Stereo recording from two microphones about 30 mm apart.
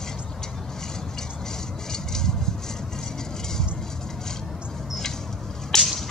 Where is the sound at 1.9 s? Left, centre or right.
Centre.